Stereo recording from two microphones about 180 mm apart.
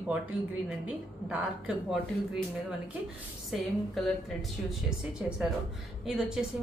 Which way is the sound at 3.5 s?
Centre (ahead or behind).